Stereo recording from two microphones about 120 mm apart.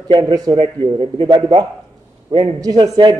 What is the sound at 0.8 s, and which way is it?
A man's voice, 45° right (ahead or behind).